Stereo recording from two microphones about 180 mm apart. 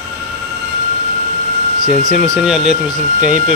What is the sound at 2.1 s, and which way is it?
Speech, 5° right (ahead or behind).